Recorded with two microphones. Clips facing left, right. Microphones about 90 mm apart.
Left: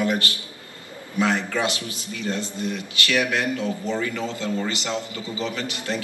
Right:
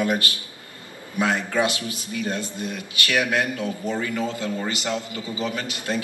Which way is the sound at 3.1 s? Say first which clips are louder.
Right 1 dB; 20° right (ahead or behind).